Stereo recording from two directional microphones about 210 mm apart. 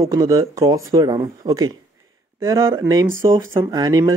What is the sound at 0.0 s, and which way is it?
Speech, 15° right (ahead or behind).